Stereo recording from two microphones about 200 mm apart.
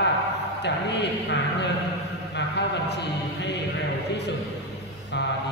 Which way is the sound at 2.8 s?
60° left (ahead or behind).